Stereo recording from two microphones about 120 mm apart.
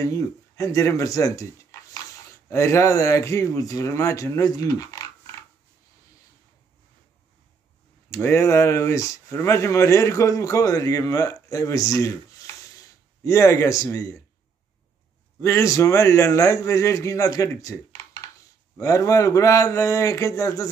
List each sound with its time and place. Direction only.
0.0 s speech: 25° left (ahead or behind)
8.1 s speech: 20° left (ahead or behind)
15.4 s speech: 25° left (ahead or behind)